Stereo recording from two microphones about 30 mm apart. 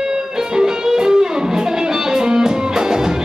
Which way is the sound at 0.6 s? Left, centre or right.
Right.